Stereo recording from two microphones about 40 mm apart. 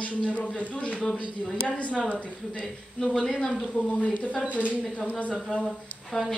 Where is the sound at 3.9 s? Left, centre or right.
Left.